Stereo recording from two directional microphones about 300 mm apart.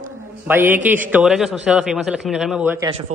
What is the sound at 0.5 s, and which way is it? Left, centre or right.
A man's voice, centre.